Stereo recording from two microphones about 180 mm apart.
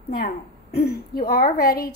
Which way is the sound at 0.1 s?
55° left (ahead or behind).